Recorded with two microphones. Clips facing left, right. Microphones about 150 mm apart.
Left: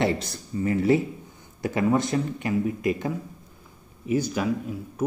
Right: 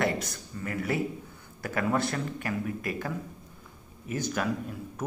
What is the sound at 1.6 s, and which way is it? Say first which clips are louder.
Speech: left 5 dB; 20° left (ahead or behind).